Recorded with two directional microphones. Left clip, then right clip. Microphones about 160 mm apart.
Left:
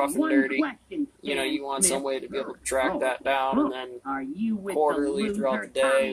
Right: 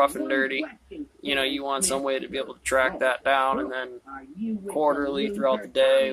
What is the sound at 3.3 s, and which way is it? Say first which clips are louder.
Speech: even; 5° left (ahead or behind).